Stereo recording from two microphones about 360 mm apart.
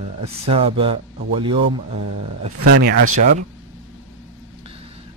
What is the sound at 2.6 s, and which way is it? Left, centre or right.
Speech, right.